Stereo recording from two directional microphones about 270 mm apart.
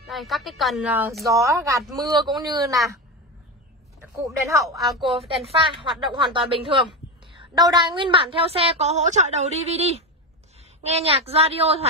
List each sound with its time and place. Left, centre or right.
0.0 s a woman's voice: centre
4.0 s a woman's voice: centre